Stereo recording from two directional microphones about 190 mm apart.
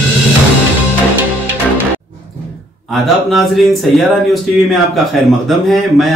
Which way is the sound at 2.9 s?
Centre (ahead or behind).